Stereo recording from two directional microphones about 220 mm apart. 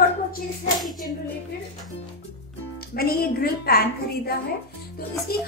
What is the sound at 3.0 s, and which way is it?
Speech, 45° left (ahead or behind).